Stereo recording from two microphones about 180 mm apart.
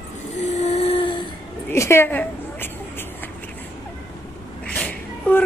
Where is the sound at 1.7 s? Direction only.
15° left (ahead or behind).